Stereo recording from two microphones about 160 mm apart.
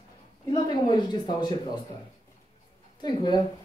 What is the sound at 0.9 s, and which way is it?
Speech, 25° left (ahead or behind).